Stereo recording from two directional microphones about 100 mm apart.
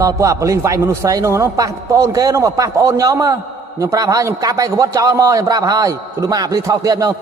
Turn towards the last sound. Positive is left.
turn(degrees=-35)  # may be behind; listen again after turning